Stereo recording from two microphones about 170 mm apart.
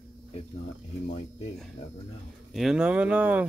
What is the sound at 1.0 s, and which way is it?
Speech, 45° left (ahead or behind).